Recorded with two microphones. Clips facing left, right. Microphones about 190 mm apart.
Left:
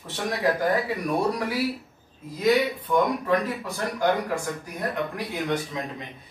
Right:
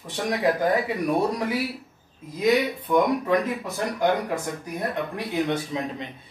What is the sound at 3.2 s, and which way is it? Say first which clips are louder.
Speech: right 1 dB; 15° right (ahead or behind).